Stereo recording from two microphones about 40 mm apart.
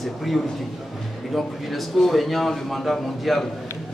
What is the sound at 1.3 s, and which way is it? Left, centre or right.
A man's voice, centre.